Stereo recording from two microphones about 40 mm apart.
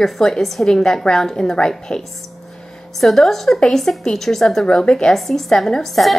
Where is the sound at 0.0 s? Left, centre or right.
Centre.